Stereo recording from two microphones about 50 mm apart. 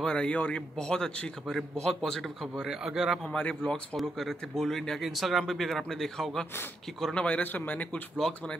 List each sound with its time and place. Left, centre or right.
0.0 s a man's voice: centre
2.5 s speech: centre
3.3 s speech: centre
3.9 s speech: centre
5.0 s speech: centre
7.2 s speech: left
8.2 s speech: centre